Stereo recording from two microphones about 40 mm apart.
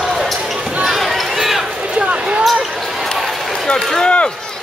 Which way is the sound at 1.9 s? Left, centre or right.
Right.